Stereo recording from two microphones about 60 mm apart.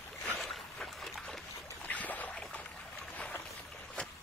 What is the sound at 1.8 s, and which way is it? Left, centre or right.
Boat, left.